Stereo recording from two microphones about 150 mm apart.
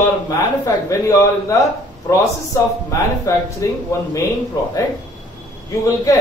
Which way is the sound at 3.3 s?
20° left (ahead or behind).